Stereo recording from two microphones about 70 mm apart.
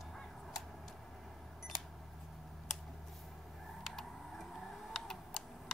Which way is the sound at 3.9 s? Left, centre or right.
Centre.